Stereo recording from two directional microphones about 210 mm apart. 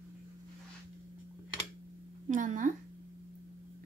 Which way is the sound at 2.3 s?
35° right (ahead or behind).